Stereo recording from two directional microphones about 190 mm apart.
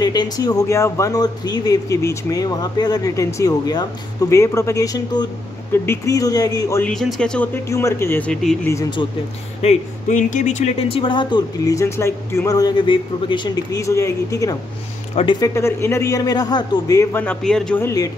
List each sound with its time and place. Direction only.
0.0 s a man's voice: 20° left (ahead or behind)
6.8 s a man's voice: centre (ahead or behind)
7.6 s a man's voice: 15° left (ahead or behind)
8.6 s a man's voice: 15° left (ahead or behind)
9.6 s a man's voice: 40° left (ahead or behind); by 18.1 s 15° left (ahead or behind)